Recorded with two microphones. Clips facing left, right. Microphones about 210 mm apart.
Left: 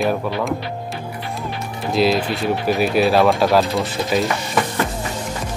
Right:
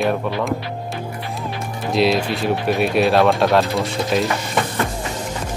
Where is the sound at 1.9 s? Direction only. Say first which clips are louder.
Even; centre (ahead or behind).